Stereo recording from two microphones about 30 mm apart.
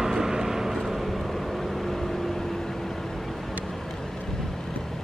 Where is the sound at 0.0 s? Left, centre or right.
Centre.